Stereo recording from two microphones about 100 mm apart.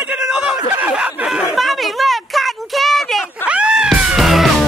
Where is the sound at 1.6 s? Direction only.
Centre (ahead or behind).